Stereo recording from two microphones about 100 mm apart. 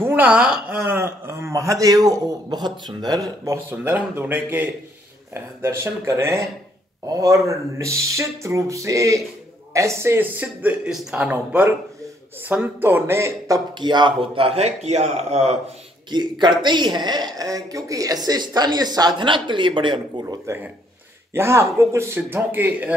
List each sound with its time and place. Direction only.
0.0 s a woman's voice: 15° right (ahead or behind)
0.8 s speech: 25° right (ahead or behind)
2.6 s speech: 45° right (ahead or behind)
3.7 s speech: 20° right (ahead or behind)
10.4 s speech: 15° right (ahead or behind)
12.8 s speech: 25° right (ahead or behind)
13.7 s a man's voice: 50° right (ahead or behind); by 15.5 s 90° right
16.1 s speech: 45° right (ahead or behind)
20.4 s speech: 20° right (ahead or behind)